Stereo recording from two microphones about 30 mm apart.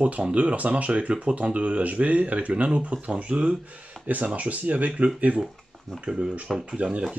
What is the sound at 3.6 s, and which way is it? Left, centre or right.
Speech, right.